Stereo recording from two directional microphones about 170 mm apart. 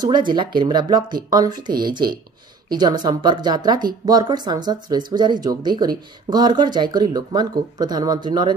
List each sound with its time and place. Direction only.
0.0 s speech: 25° right (ahead or behind)